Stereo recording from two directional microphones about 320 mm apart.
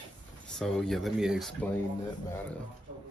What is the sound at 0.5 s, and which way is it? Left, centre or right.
Speech, centre.